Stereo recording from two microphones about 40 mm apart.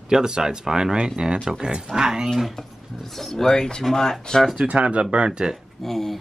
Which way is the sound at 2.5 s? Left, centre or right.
Centre.